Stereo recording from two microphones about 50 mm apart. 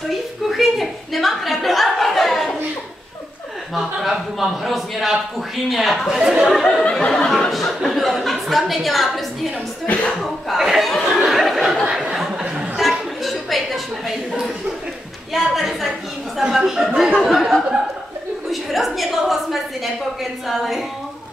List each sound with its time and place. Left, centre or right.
0.1 s a sound: centre
3.7 s a man's voice: centre
6.1 s speech: centre
6.4 s a woman's voice: centre
6.9 s laughter: centre
7.2 s speech: centre
9.8 s speech: left
10.6 s speech: centre
10.9 s a sound: centre
12.7 s a sound: centre
15.3 s a sound: centre
16.4 s a woman's voice: centre